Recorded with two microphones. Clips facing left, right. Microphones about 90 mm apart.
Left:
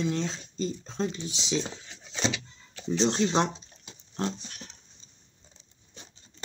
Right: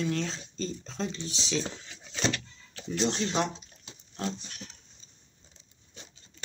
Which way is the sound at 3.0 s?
30° left (ahead or behind).